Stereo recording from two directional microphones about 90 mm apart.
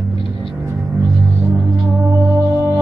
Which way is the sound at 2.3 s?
25° right (ahead or behind).